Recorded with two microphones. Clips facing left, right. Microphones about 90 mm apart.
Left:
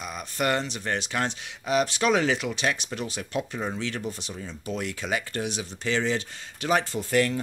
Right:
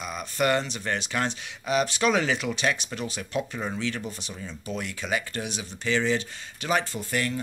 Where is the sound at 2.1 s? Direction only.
55° left (ahead or behind).